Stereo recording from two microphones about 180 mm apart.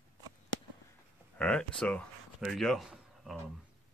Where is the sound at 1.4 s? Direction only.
5° left (ahead or behind).